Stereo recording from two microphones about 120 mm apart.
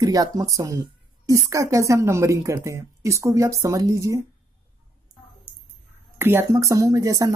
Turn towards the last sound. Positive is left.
turn(degrees=-30)  # may be behind; listen again after turning